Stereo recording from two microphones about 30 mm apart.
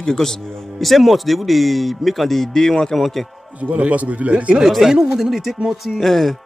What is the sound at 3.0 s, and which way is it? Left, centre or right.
Speech, centre.